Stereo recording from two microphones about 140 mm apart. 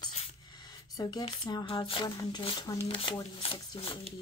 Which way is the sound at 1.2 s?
30° left (ahead or behind).